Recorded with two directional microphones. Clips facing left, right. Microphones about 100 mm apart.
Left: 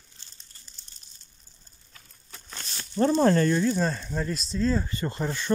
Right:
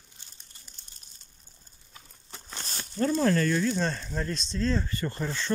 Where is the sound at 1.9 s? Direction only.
20° right (ahead or behind).